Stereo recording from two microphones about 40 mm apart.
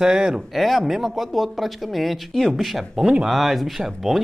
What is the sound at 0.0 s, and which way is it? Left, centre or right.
Speech, centre.